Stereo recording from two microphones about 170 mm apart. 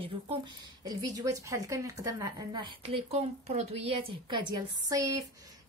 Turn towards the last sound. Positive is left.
turn(degrees=-20)  # may be behind; listen again after turning